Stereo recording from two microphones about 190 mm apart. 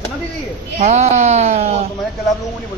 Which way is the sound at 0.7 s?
35° right (ahead or behind).